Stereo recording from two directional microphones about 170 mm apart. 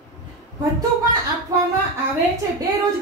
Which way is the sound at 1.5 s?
20° right (ahead or behind).